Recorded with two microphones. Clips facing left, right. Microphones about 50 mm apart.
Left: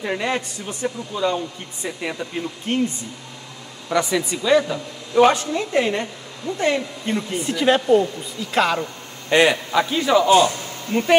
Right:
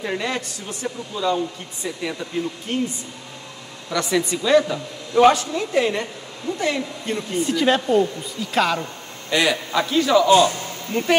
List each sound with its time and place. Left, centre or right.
0.0 s a woman's voice: centre
2.7 s speech: left
4.0 s a man's voice: centre
5.3 s a woman's voice: left; by 8.8 s centre
9.3 s a woman's voice: left
9.7 s a man's voice: centre